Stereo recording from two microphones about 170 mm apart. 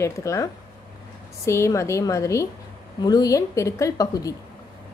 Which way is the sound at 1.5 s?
15° left (ahead or behind).